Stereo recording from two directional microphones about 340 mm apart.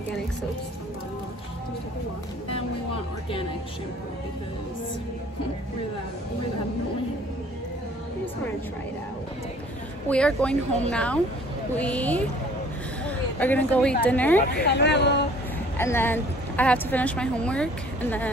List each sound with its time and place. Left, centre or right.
10.0 s a woman's voice: centre
13.0 s a sound: centre
14.0 s a woman's voice: centre
14.5 s speech: left
15.8 s a woman's voice: centre